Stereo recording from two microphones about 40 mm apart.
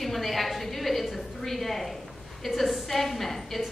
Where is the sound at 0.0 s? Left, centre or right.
Centre.